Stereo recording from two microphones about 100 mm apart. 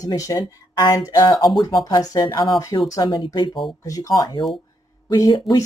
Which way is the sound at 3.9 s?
35° left (ahead or behind).